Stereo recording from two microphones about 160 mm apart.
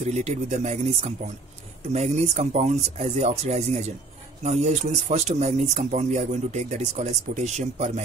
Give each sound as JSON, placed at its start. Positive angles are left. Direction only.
{"t": 0.0, "sound": "speech", "side_deg": -45}